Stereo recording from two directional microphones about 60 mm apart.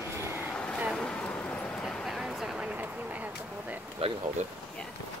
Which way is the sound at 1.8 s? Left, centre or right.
Centre.